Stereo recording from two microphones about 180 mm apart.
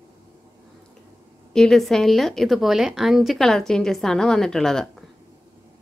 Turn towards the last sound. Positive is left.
turn(degrees=0)  # may be behind; listen again after turning